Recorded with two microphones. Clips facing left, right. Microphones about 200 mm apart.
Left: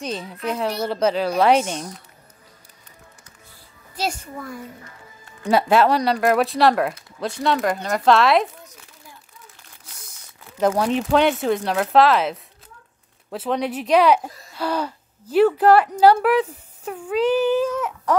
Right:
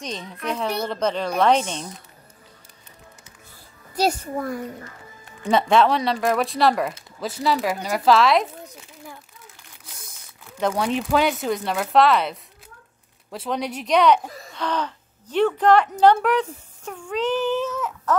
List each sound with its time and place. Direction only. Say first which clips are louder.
0.0 s speech: left 3 dB; 5° left (ahead or behind)
3.9 s a child's voice: right 5 dB; 45° right (ahead or behind)
5.5 s speech: left 1 dB; 5° left (ahead or behind)
10.8 s speech: left 1 dB; centre (ahead or behind)